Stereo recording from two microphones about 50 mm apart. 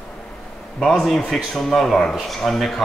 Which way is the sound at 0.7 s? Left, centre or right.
Centre.